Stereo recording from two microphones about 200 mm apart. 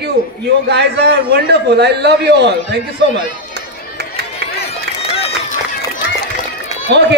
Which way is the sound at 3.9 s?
55° right (ahead or behind).